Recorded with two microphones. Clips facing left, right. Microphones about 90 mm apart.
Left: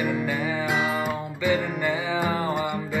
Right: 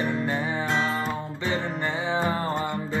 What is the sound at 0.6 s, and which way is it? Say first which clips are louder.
Music: left 2 dB; 10° left (ahead or behind).